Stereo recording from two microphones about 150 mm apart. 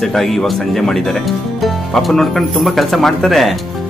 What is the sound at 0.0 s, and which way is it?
Speech, centre (ahead or behind).